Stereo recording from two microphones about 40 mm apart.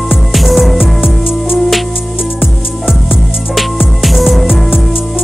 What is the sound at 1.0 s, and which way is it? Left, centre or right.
Music, centre.